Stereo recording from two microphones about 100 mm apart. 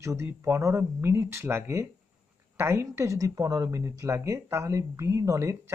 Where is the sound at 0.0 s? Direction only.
30° right (ahead or behind).